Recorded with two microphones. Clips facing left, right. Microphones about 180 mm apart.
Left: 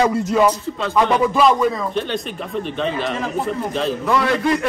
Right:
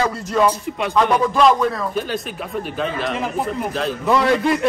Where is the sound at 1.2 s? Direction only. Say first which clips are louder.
Even; 5° left (ahead or behind).